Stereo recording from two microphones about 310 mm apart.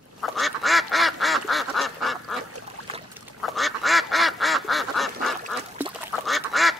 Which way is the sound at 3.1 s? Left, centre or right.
Centre.